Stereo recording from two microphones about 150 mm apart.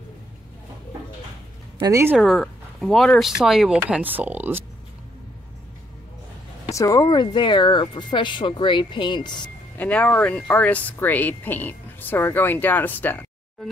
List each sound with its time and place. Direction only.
1.8 s speech: 20° right (ahead or behind)
2.1 s speech: centre (ahead or behind)
6.6 s speech: 20° left (ahead or behind)
9.8 s speech: 10° left (ahead or behind)